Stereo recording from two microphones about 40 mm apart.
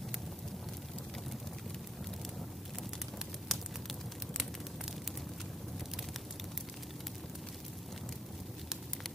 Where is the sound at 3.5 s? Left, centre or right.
Centre.